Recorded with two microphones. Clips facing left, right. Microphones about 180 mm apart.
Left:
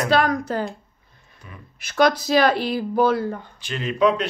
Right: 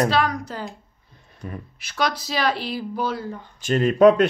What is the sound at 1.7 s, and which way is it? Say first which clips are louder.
Speech: left 7 dB; 50° left (ahead or behind).